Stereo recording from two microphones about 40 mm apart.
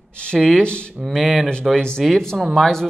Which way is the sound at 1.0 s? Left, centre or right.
Centre.